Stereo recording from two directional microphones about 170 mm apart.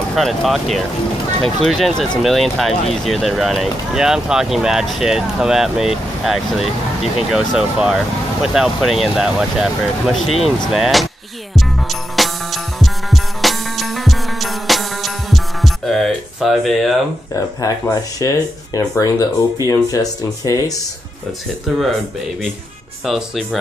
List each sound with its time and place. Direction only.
0.1 s speech: centre (ahead or behind)
11.5 s music: centre (ahead or behind)
17.6 s speech: 20° left (ahead or behind)
23.0 s speech: centre (ahead or behind)